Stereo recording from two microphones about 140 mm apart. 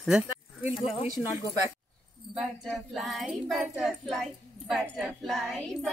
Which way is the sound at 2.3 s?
Centre (ahead or behind).